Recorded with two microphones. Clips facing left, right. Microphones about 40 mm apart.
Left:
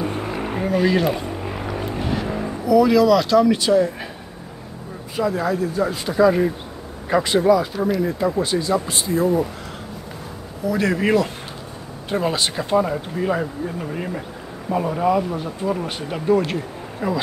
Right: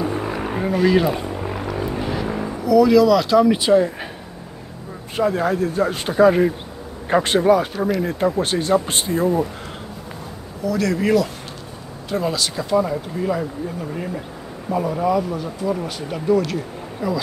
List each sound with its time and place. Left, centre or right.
0.3 s vehicle: centre
2.0 s vehicle: centre
2.6 s speech: centre
3.5 s speech: right
5.1 s speech: right
10.6 s speech: left
15.1 s speech: left
15.7 s speech: centre
16.3 s speech: left